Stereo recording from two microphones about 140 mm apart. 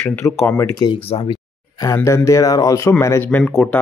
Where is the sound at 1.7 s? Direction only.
20° left (ahead or behind); by 3.8 s 5° left (ahead or behind).